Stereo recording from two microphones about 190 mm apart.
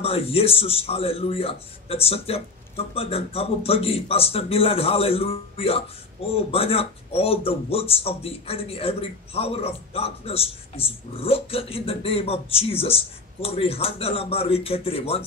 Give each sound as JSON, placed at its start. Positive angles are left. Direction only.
{"t": 0.0, "sound": "speech", "side_deg": 30}